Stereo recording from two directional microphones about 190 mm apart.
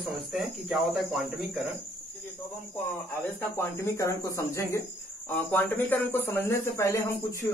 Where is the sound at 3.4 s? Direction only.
15° left (ahead or behind).